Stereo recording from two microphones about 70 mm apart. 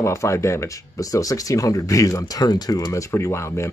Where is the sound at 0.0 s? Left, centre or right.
Left.